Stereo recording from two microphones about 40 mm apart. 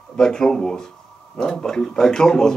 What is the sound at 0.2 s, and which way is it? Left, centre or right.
Speech, centre.